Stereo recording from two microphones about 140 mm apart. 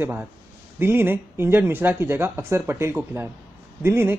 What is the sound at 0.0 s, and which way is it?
Speech, 15° right (ahead or behind).